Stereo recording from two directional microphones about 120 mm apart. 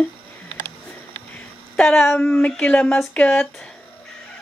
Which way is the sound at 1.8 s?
5° left (ahead or behind).